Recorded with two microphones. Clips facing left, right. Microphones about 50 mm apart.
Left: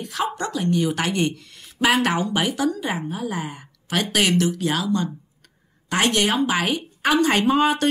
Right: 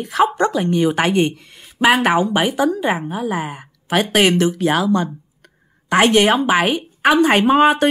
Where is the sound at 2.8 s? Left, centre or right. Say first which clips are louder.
Right 6 dB; right.